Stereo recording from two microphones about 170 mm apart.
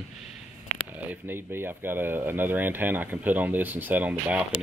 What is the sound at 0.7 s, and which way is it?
Speech, 10° right (ahead or behind).